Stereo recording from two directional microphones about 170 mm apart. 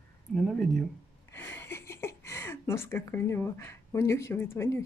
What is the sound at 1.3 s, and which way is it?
Speech, 15° left (ahead or behind).